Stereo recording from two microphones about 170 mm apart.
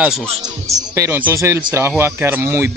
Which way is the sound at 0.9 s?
15° right (ahead or behind).